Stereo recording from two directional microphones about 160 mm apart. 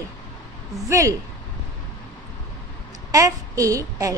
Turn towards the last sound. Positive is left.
turn(degrees=-20)  # may be behind; listen again after turning